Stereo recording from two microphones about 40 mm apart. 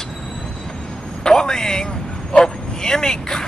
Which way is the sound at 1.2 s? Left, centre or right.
Centre.